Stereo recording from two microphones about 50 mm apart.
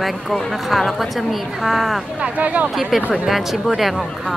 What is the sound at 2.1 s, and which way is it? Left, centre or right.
Speech, right.